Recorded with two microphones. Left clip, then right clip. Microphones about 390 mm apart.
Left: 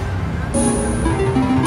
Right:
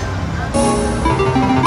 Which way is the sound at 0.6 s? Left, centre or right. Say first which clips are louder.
Right 4 dB; centre.